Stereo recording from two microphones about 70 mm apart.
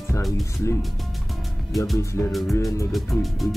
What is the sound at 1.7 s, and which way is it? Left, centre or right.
Speech, centre.